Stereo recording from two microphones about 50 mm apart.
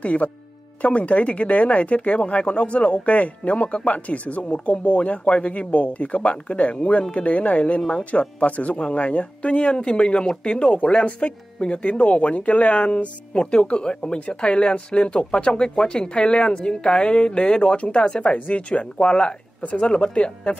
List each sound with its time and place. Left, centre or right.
0.0 s speech: left